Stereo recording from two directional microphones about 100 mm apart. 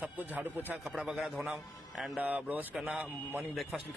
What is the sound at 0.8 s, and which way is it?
Speech, 5° right (ahead or behind).